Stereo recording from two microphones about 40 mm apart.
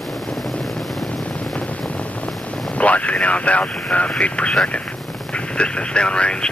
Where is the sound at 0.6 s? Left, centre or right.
Centre.